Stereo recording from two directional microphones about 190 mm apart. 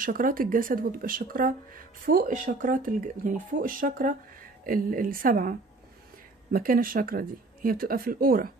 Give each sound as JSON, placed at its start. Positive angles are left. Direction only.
{"t": 0.0, "sound": "speech", "side_deg": -45}